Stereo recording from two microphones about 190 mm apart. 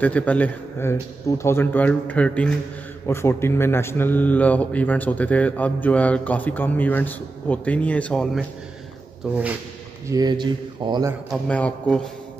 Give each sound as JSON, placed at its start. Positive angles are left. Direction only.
{"t": 0.0, "sound": "speech", "side_deg": 10}
{"t": 9.3, "sound": "speech", "side_deg": -5}
{"t": 10.0, "sound": "speech", "side_deg": -20}
{"t": 11.4, "sound": "speech", "side_deg": 5}